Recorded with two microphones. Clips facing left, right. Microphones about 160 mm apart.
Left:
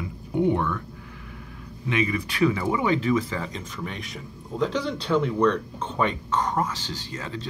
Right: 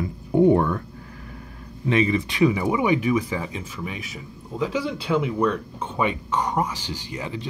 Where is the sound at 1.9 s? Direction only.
30° right (ahead or behind).